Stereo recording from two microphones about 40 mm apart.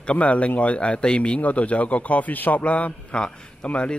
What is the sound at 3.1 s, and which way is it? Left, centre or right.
Speech, left.